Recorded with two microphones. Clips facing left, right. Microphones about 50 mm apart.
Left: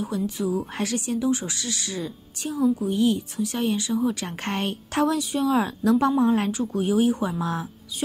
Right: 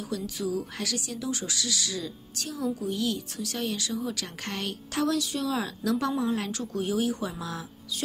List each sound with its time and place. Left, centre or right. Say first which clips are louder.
0.0 s a woman's voice: left 5 dB; left
6.5 s a woman's voice: left 6 dB; centre